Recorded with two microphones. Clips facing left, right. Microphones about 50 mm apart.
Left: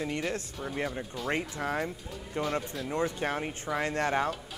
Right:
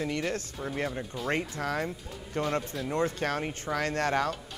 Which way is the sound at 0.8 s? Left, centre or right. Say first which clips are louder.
Right 1 dB; centre.